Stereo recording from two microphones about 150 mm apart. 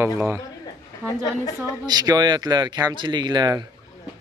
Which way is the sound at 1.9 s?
25° right (ahead or behind).